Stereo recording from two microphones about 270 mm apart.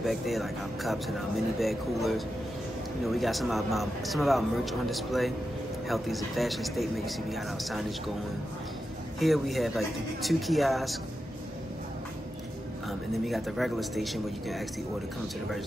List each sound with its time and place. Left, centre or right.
0.0 s speech: centre
9.2 s speech: centre
13.2 s speech: centre